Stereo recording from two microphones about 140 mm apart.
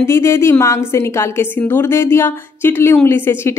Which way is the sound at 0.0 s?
20° left (ahead or behind).